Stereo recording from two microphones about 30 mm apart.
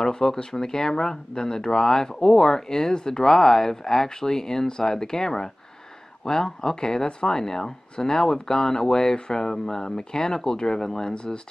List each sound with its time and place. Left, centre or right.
0.0 s speech: centre